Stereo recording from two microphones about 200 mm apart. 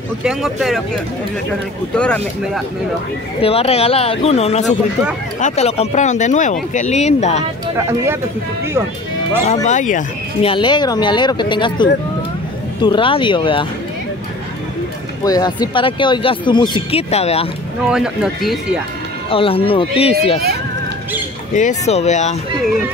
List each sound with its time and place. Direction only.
0.2 s speech: centre (ahead or behind)
2.0 s speech: 5° left (ahead or behind)
3.3 s speech: 30° left (ahead or behind)
7.6 s speech: 15° right (ahead or behind)
9.5 s speech: 35° left (ahead or behind)
10.4 s speech: 25° left (ahead or behind)
15.2 s speech: 20° left (ahead or behind)
17.8 s speech: 5° right (ahead or behind)
19.3 s speech: 25° left (ahead or behind)
21.5 s speech: 35° left (ahead or behind)